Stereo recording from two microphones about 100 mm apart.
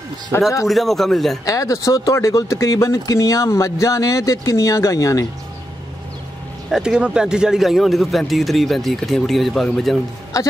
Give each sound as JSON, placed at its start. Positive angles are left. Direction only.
{"t": 0.3, "sound": "speech", "side_deg": 25}
{"t": 0.7, "sound": "a man's voice", "side_deg": 0}
{"t": 1.4, "sound": "speech", "side_deg": 35}
{"t": 6.7, "sound": "a man's voice", "side_deg": -5}